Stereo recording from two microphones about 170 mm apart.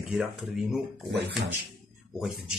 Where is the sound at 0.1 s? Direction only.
5° right (ahead or behind).